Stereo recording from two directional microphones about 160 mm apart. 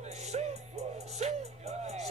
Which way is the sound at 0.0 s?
45° right (ahead or behind).